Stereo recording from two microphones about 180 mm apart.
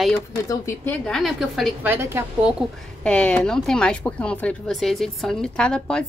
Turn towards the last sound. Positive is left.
turn(degrees=5)  # may be behind; listen again after turning